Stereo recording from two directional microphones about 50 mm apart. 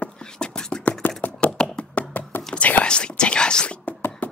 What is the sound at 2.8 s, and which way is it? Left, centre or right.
Whispering, centre.